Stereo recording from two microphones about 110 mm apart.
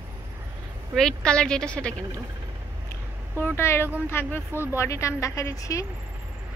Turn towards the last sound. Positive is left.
turn(degrees=30)  # may be behind; listen again after turning